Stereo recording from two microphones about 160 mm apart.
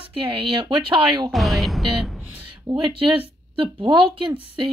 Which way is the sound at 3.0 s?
35° right (ahead or behind).